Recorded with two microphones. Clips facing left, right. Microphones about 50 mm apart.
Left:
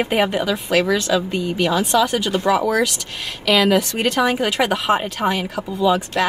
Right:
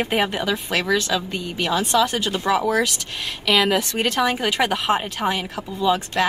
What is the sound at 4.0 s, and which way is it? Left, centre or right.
Speech, left.